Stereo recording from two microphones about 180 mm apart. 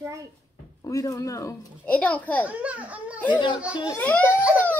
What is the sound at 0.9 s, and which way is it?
Speech, 20° left (ahead or behind).